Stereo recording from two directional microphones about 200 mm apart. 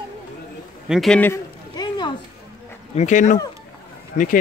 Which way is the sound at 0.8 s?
Centre (ahead or behind).